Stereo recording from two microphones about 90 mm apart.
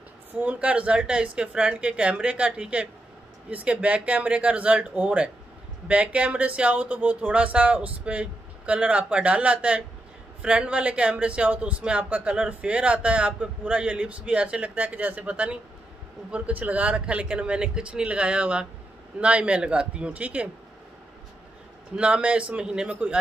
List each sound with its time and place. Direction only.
0.3 s a man's voice: 15° right (ahead or behind)
21.9 s a man's voice: 10° right (ahead or behind)